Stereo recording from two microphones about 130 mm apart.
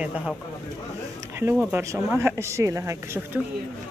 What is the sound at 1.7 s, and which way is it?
Speech, 20° right (ahead or behind).